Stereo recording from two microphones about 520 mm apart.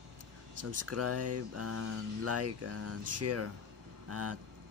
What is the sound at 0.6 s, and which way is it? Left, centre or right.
Speech, right.